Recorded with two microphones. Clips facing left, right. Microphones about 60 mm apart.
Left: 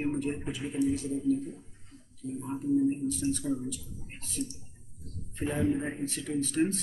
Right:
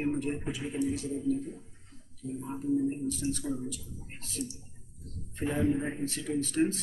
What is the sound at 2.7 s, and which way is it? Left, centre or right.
A man's voice, centre.